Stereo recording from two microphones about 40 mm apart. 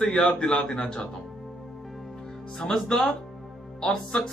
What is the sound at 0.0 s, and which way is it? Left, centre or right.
Speech, left.